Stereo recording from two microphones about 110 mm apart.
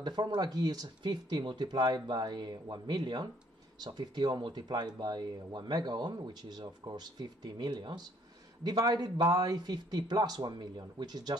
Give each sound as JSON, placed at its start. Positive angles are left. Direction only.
{"t": 0.0, "sound": "speech", "side_deg": -40}